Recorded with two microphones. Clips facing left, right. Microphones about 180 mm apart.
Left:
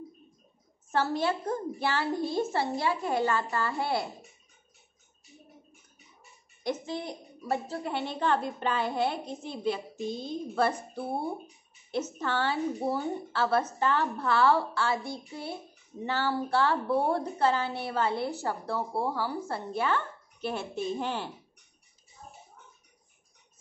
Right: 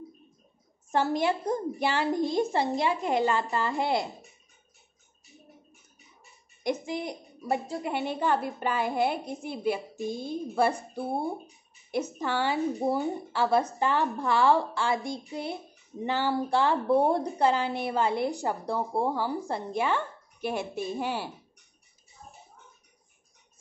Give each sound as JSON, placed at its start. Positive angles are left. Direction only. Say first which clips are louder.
{"t": 0.9, "sound": "a woman's voice", "louder": "right 2 dB", "side_deg": -15}
{"t": 6.6, "sound": "a woman's voice", "louder": "right 3 dB", "side_deg": -10}